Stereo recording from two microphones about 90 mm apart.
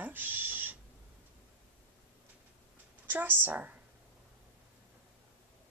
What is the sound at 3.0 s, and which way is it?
Speech, 20° right (ahead or behind).